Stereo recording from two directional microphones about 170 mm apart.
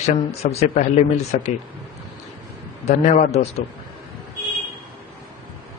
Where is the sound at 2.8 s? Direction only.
45° left (ahead or behind).